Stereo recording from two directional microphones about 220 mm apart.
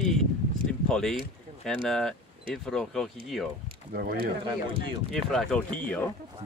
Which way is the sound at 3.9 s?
45° right (ahead or behind).